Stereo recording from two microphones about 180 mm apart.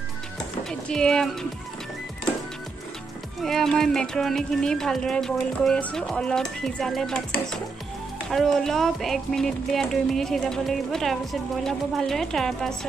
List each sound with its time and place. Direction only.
0.7 s speech: 5° left (ahead or behind)
3.4 s speech: centre (ahead or behind)
8.3 s speech: centre (ahead or behind)